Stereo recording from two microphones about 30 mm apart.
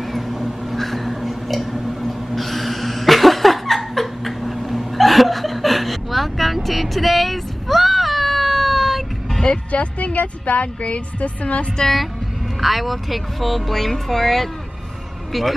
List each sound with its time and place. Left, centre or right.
0.0 s crow: centre
0.7 s a sound: centre
9.7 s speech: left
12.5 s speech: centre